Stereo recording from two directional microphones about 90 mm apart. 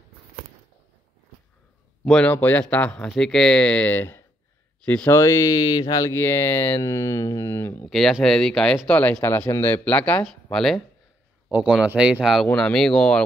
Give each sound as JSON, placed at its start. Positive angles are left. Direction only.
{"t": 2.2, "sound": "speech", "side_deg": 20}
{"t": 6.1, "sound": "speech", "side_deg": 25}
{"t": 7.8, "sound": "speech", "side_deg": 5}
{"t": 10.2, "sound": "speech", "side_deg": 5}
{"t": 11.4, "sound": "speech", "side_deg": -15}
{"t": 12.2, "sound": "speech", "side_deg": 0}